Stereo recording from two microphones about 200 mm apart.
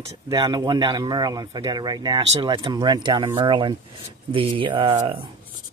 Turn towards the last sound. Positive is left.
turn(degrees=-25)  # may be behind; listen again after turning